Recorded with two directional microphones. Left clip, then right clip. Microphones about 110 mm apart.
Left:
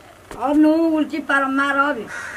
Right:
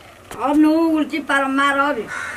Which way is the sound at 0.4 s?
Centre (ahead or behind).